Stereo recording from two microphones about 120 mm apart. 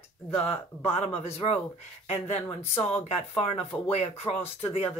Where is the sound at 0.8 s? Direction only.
60° left (ahead or behind).